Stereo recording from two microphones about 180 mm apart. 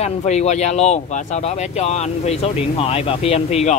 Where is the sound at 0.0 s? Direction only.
40° left (ahead or behind).